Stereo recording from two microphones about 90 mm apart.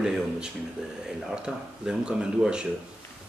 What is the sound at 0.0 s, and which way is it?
Speech, 5° right (ahead or behind).